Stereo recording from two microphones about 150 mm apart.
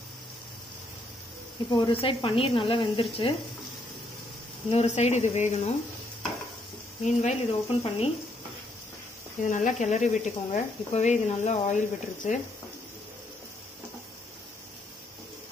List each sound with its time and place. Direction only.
1.7 s speech: 35° left (ahead or behind)
4.6 s speech: 45° left (ahead or behind)
7.0 s speech: 50° left (ahead or behind)
9.4 s speech: 55° left (ahead or behind)